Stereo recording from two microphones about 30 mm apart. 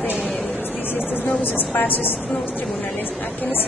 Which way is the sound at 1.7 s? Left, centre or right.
Left.